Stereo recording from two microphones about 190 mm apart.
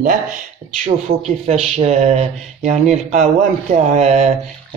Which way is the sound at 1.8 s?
35° right (ahead or behind).